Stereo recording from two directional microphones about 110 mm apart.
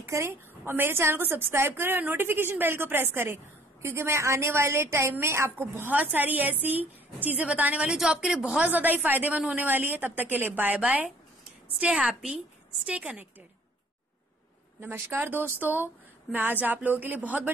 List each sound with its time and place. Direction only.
0.1 s a woman's voice: 25° right (ahead or behind)
14.8 s a woman's voice: 20° right (ahead or behind)